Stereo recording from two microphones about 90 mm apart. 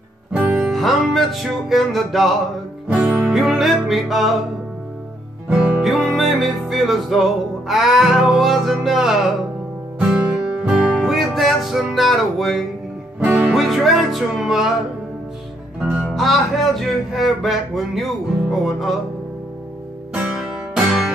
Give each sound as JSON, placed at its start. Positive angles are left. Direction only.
{"t": 0.4, "sound": "music", "side_deg": -15}
{"t": 0.7, "sound": "music", "side_deg": 0}
{"t": 2.9, "sound": "music", "side_deg": -15}
{"t": 3.3, "sound": "music", "side_deg": 0}
{"t": 5.5, "sound": "music", "side_deg": -10}
{"t": 15.8, "sound": "music", "side_deg": 0}
{"t": 20.3, "sound": "music", "side_deg": 0}